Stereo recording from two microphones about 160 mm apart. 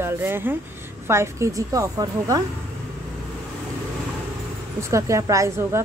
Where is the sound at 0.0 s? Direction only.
15° right (ahead or behind).